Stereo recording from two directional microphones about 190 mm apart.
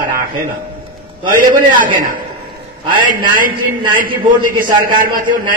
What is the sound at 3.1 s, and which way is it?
A man's voice, 45° right (ahead or behind).